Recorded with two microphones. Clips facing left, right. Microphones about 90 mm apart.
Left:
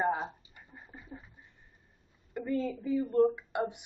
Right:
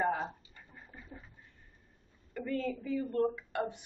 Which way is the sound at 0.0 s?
20° left (ahead or behind).